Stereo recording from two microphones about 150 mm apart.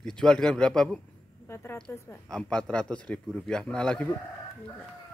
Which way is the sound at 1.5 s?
15° left (ahead or behind).